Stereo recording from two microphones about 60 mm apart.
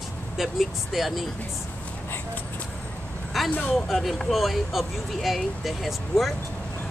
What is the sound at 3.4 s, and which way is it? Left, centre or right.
Speech, left.